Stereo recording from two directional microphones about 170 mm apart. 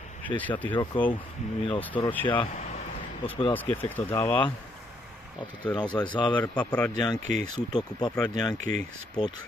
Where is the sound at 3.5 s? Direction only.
10° left (ahead or behind).